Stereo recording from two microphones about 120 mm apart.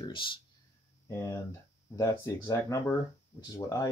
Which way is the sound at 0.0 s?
45° left (ahead or behind).